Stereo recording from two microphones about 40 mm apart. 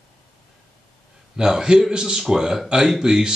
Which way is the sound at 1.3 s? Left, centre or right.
Centre.